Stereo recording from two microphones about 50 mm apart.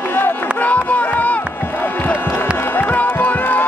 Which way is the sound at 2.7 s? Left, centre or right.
Left.